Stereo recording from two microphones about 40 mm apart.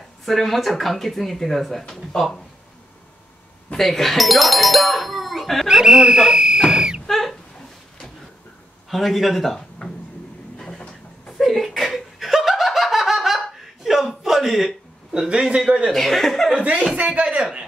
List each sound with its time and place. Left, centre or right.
0.2 s speech: centre
3.7 s speech: centre
5.7 s speech: centre
7.1 s a sound: centre
8.9 s speech: centre
10.8 s a sound: centre
11.4 s laughter: centre
13.8 s a sound: centre
15.5 s a man's voice: right
15.9 s speech: centre
16.5 s a man's voice: right